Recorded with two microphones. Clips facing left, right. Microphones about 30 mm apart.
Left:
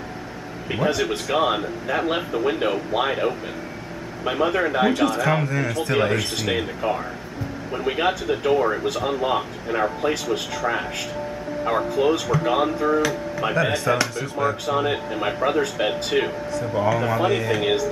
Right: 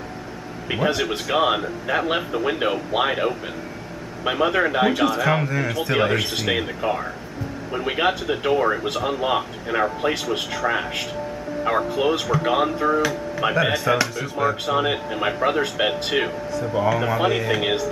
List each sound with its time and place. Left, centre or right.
0.7 s speech: centre
11.6 s speech: centre